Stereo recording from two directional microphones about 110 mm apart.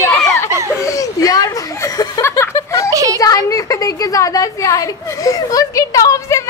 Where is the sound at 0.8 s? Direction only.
30° left (ahead or behind).